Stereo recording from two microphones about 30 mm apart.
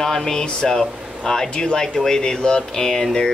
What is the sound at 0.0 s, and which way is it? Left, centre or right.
Speech, centre.